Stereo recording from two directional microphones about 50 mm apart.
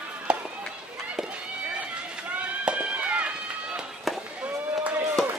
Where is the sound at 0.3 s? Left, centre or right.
Right.